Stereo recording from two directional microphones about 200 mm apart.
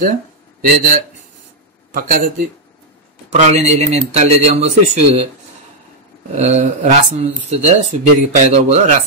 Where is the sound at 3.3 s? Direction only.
35° right (ahead or behind).